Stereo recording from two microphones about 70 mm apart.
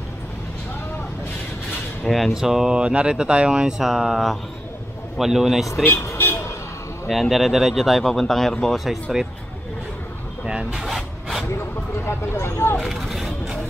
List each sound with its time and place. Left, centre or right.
2.0 s speech: centre
6.1 s vehicle: left
7.1 s speech: centre
9.1 s speech: centre
10.4 s speech: centre
10.9 s rub: centre
12.1 s speech: left
12.9 s vehicle: centre